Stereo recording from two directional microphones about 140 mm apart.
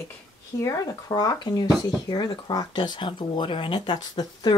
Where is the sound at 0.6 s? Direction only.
25° left (ahead or behind).